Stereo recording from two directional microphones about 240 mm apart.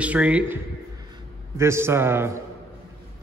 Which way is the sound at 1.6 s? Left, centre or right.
Centre.